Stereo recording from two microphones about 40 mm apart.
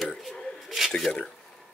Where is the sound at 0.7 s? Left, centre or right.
Centre.